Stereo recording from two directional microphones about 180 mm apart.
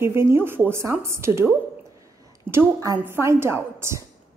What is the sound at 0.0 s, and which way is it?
A woman's voice, 15° right (ahead or behind).